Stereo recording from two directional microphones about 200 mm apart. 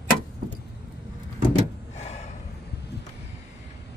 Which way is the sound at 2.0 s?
35° left (ahead or behind).